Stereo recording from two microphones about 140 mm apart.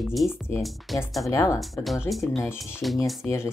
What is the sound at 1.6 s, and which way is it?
Speech, centre (ahead or behind).